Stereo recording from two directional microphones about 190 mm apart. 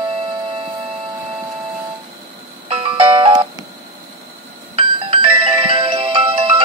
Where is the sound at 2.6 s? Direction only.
30° right (ahead or behind).